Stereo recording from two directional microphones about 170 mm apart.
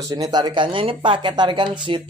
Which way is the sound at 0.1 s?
25° right (ahead or behind).